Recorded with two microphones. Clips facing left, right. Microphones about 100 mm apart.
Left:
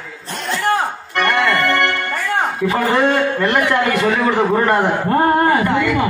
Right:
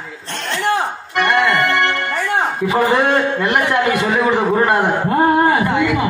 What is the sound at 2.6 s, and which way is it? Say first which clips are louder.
A man's voice: right 1 dB; 15° right (ahead or behind).